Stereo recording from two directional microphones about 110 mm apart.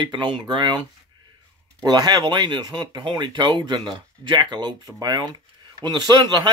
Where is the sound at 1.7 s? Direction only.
40° right (ahead or behind).